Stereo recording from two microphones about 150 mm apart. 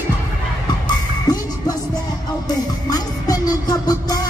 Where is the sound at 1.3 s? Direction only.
25° left (ahead or behind).